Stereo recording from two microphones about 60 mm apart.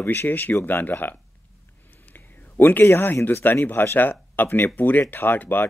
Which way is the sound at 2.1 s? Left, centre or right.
Left.